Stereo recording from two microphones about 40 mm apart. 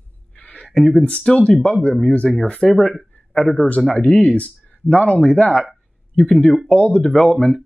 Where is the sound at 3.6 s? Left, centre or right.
Left.